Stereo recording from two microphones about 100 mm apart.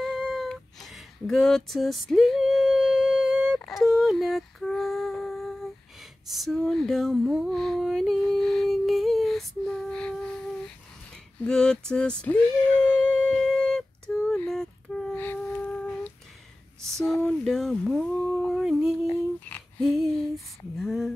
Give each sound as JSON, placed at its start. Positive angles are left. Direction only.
{"t": 0.0, "sound": "cat", "side_deg": 0}
{"t": 3.5, "sound": "humming", "side_deg": 0}
{"t": 6.2, "sound": "a sound", "side_deg": 0}
{"t": 9.7, "sound": "lullaby", "side_deg": 10}
{"t": 11.4, "sound": "a sound", "side_deg": 10}
{"t": 15.1, "sound": "humming", "side_deg": 15}
{"t": 17.0, "sound": "a sound", "side_deg": 5}
{"t": 18.5, "sound": "humming", "side_deg": -5}
{"t": 19.8, "sound": "female singing", "side_deg": 0}